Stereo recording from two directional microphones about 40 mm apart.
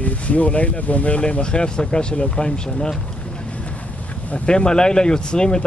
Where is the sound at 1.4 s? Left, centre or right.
Left.